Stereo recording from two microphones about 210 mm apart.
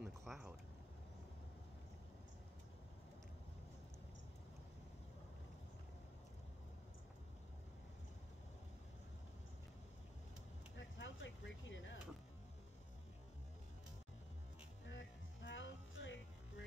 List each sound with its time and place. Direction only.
0.0 s vehicle: centre (ahead or behind)
11.0 s a sound: 60° left (ahead or behind)
14.9 s music: 60° left (ahead or behind)